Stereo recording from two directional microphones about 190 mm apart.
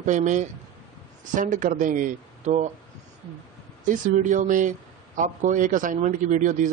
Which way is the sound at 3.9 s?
40° right (ahead or behind).